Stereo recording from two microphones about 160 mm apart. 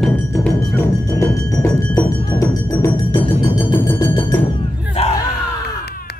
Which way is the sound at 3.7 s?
15° left (ahead or behind).